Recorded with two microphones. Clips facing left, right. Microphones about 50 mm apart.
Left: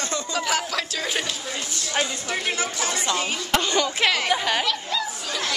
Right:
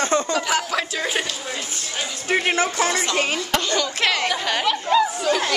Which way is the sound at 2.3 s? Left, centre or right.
Right.